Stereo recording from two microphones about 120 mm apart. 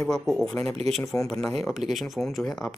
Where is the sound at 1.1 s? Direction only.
15° left (ahead or behind).